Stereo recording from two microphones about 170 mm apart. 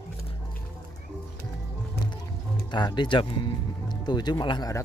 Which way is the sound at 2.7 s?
25° left (ahead or behind).